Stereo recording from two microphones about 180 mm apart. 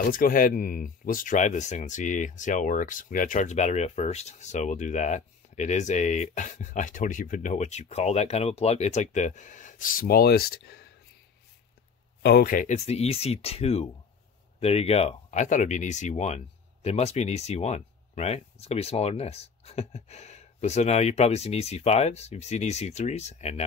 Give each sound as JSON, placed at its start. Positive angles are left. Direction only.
{"t": 0.1, "sound": "speech", "side_deg": 50}
{"t": 12.2, "sound": "speech", "side_deg": 60}